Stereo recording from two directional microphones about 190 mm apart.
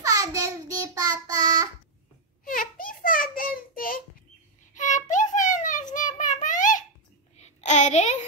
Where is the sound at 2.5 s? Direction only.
45° left (ahead or behind).